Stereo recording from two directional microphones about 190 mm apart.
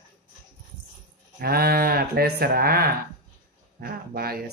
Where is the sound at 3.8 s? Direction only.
55° right (ahead or behind).